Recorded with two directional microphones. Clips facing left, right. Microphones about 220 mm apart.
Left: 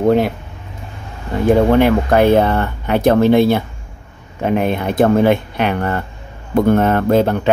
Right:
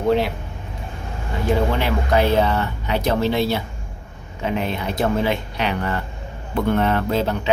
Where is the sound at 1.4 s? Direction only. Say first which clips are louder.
Left 9 dB; 50° left (ahead or behind).